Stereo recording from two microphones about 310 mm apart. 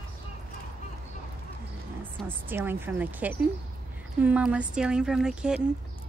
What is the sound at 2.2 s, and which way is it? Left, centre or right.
Speech, centre.